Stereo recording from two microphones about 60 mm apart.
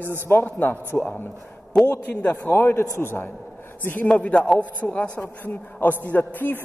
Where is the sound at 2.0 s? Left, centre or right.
Left.